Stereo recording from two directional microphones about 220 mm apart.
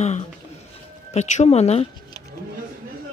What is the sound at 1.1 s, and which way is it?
Speech, 30° left (ahead or behind).